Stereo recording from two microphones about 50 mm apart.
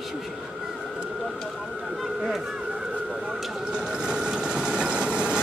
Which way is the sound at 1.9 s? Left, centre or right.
Centre.